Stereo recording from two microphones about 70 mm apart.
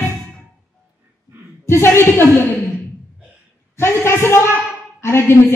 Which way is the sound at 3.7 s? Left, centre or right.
Left.